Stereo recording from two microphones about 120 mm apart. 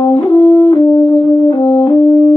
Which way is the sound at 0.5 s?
30° left (ahead or behind).